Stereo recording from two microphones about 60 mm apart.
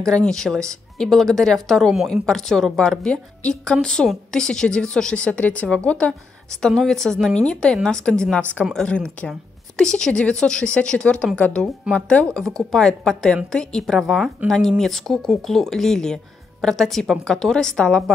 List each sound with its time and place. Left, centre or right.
0.0 s a woman's voice: centre